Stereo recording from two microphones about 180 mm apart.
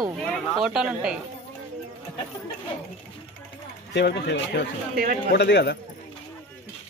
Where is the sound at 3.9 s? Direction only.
70° left (ahead or behind).